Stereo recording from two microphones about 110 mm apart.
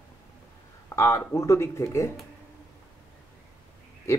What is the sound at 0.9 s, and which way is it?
Speech, 25° left (ahead or behind).